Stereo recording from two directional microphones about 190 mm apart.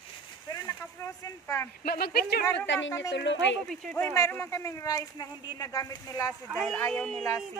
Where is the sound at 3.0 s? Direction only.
65° left (ahead or behind).